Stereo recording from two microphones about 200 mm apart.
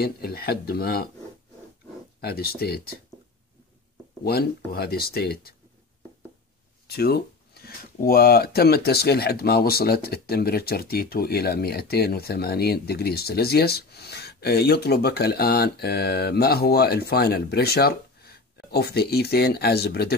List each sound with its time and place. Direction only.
0.0 s speech: 50° left (ahead or behind)
2.1 s speech: 50° left (ahead or behind)
4.2 s speech: 50° left (ahead or behind)
7.0 s speech: 50° left (ahead or behind)